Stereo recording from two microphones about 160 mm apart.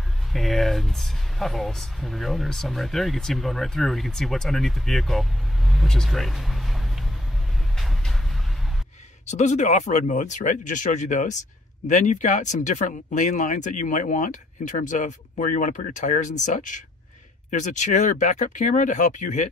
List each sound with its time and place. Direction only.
0.3 s speech: centre (ahead or behind)
5.7 s vehicle: centre (ahead or behind)
9.2 s speech: 45° left (ahead or behind)